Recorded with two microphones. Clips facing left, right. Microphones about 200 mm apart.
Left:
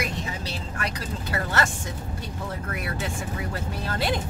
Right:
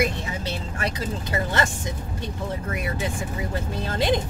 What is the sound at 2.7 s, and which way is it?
Speech, 20° right (ahead or behind).